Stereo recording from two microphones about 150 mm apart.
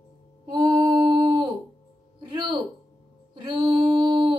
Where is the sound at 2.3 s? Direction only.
30° right (ahead or behind).